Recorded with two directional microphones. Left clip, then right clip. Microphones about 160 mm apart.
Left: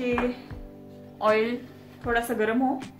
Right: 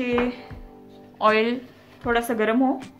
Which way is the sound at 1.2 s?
45° right (ahead or behind).